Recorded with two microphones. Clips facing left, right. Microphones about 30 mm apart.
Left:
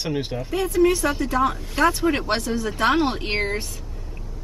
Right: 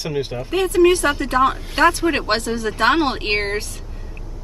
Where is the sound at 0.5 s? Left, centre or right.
Right.